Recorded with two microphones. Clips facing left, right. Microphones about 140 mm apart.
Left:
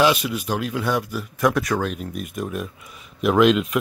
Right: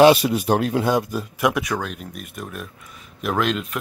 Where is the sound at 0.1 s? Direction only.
35° right (ahead or behind).